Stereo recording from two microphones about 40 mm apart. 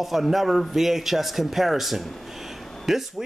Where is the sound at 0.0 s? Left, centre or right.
Centre.